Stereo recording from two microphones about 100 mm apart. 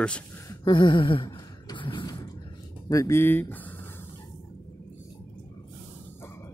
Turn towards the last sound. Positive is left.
turn(degrees=25)  # may be behind; listen again after turning